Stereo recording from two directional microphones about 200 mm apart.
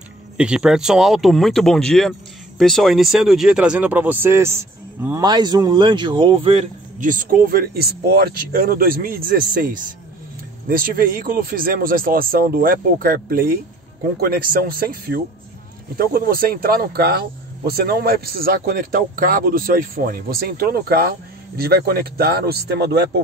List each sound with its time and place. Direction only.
0.4 s a man's voice: 5° right (ahead or behind); by 6.6 s 25° right (ahead or behind)
7.0 s speech: 40° right (ahead or behind)